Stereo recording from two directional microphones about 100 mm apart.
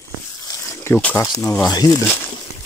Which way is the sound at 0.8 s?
20° left (ahead or behind).